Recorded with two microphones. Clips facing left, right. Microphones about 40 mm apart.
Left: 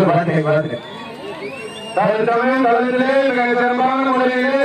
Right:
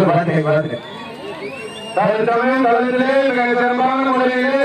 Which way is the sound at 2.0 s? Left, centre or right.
Centre.